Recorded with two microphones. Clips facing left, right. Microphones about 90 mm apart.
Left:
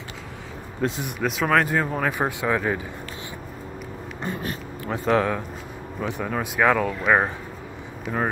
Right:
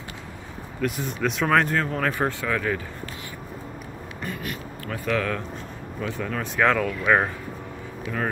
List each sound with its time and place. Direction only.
0.7 s speech: 25° left (ahead or behind)
1.2 s speech: centre (ahead or behind); by 2.8 s 20° left (ahead or behind)
4.2 s a sound: 30° left (ahead or behind)
5.9 s speech: 15° left (ahead or behind)